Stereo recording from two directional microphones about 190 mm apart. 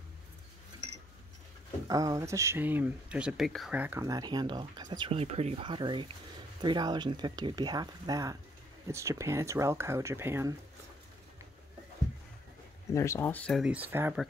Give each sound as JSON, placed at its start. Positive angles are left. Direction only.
{"t": 1.9, "sound": "speech", "side_deg": -20}
{"t": 4.0, "sound": "speech", "side_deg": -20}
{"t": 12.9, "sound": "speech", "side_deg": 15}